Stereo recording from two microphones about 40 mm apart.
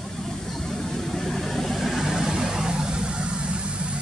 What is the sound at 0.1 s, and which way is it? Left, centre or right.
Vehicle, centre.